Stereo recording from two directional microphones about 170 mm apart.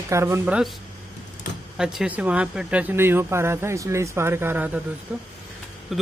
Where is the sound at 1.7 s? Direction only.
5° right (ahead or behind).